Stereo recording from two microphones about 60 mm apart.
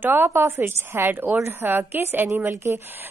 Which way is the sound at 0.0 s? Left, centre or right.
Right.